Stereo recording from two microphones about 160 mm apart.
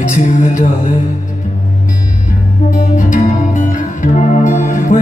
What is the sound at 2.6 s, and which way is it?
Music, 50° left (ahead or behind).